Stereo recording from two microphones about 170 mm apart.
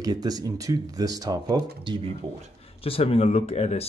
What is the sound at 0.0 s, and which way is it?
Speech, 20° right (ahead or behind).